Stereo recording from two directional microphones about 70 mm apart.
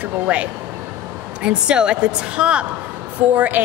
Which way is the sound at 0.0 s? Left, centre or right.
Centre.